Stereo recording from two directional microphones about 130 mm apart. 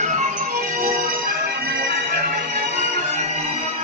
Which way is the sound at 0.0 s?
70° right (ahead or behind).